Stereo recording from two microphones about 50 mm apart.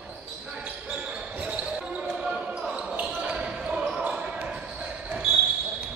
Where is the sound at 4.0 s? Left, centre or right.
Right.